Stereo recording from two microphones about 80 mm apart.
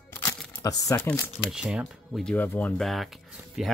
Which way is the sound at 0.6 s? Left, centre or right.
Left.